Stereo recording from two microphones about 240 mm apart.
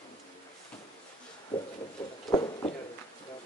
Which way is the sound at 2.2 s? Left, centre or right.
Centre.